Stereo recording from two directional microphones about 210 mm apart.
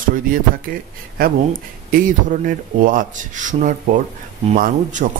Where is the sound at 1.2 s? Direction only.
45° right (ahead or behind).